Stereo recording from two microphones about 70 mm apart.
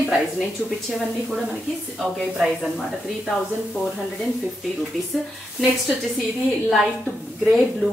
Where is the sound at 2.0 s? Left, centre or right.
Centre.